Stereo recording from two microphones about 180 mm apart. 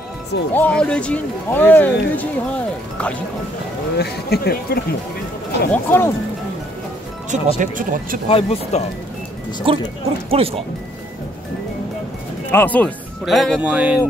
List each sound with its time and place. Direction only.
0.6 s speech: 5° left (ahead or behind)
4.0 s speech: 60° left (ahead or behind)
5.7 s speech: 10° left (ahead or behind)
7.2 s speech: 45° right (ahead or behind)
8.3 s speech: 35° left (ahead or behind)
9.7 s speech: 30° right (ahead or behind)
12.4 s speech: 10° left (ahead or behind); by 14.0 s 5° right (ahead or behind)